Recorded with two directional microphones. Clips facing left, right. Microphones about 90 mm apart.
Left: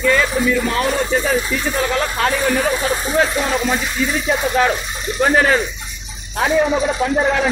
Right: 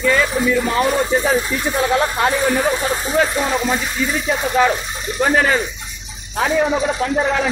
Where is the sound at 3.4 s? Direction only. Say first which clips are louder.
Even; 15° right (ahead or behind).